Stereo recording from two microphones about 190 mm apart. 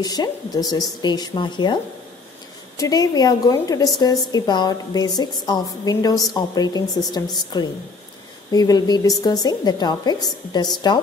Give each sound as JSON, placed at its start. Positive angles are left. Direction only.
{"t": 0.0, "sound": "a woman's voice", "side_deg": 20}
{"t": 2.8, "sound": "a woman's voice", "side_deg": 20}